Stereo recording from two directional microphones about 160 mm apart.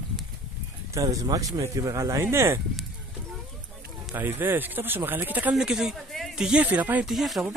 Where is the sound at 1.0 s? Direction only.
20° right (ahead or behind).